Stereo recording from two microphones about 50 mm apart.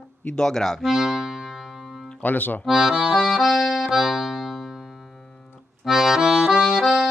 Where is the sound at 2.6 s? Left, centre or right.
Centre.